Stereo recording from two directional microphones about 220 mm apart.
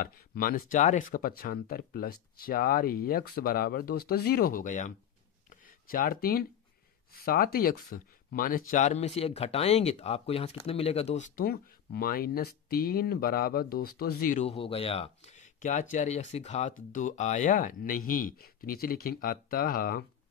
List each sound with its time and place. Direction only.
0.0 s speech: 40° left (ahead or behind)